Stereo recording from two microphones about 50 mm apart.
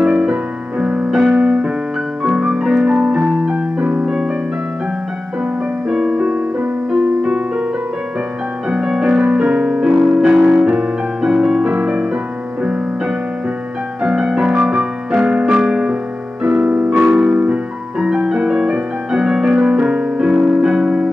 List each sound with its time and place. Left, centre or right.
0.0 s music: centre
2.8 s keyboard: right
5.9 s music: centre
8.6 s music: centre
14.0 s piano: centre
15.5 s music: centre
16.4 s keyboard: right
17.0 s music: right